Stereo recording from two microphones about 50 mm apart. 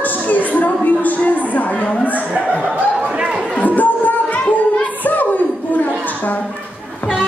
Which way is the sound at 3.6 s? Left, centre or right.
Left.